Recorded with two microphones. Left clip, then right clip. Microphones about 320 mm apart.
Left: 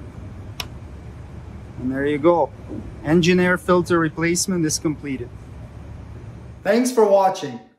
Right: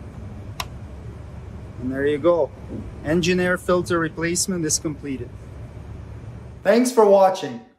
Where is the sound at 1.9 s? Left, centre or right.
Centre.